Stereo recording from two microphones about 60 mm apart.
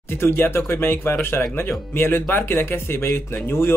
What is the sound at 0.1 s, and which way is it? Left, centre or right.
Speech, left.